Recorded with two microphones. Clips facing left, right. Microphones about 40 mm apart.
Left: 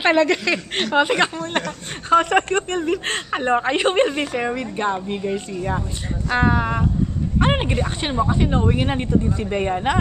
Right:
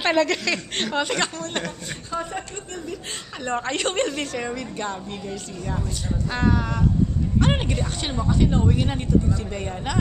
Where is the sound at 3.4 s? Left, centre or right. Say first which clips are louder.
Left 6 dB; left.